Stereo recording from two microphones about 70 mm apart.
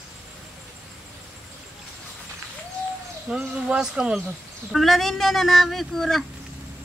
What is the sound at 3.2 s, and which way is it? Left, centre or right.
Speech, centre.